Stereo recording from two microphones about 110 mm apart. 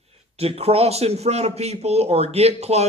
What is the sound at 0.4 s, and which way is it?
A man's voice, 65° right (ahead or behind).